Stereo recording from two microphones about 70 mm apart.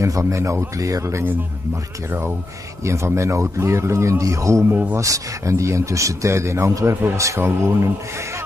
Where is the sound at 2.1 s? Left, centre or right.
Right.